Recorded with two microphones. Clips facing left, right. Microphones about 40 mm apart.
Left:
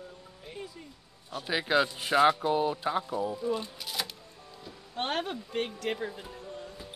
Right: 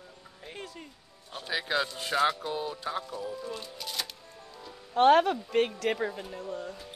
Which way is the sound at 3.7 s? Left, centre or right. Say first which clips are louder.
Left 1 dB; centre.